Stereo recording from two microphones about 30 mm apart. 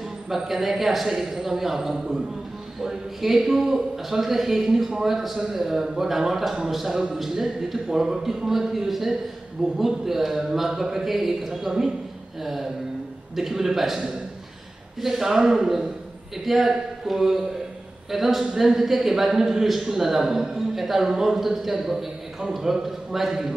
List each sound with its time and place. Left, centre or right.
0.3 s a man's voice: centre
3.2 s a man's voice: centre